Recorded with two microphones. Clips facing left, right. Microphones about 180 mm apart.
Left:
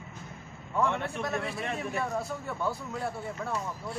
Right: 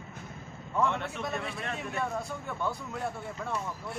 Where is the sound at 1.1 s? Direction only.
Centre (ahead or behind).